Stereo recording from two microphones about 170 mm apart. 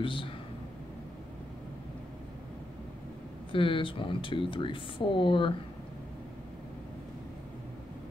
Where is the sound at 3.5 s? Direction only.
30° left (ahead or behind).